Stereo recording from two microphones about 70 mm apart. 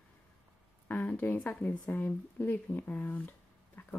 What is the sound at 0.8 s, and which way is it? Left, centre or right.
Speech, left.